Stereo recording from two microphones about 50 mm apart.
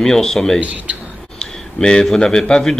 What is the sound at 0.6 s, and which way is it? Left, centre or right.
Speech, right.